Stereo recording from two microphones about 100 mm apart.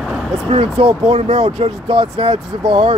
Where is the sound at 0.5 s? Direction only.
90° right.